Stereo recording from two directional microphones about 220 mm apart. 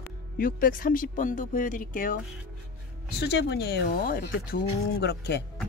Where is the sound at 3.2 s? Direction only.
45° left (ahead or behind).